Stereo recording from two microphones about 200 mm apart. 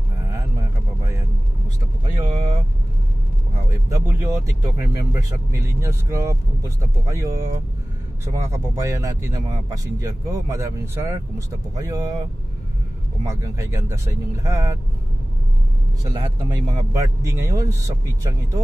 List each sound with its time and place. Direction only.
3.9 s speech: 15° right (ahead or behind)
13.2 s speech: 15° right (ahead or behind)
16.0 s speech: 20° right (ahead or behind)